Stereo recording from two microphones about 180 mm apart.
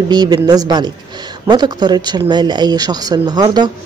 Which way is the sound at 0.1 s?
25° right (ahead or behind).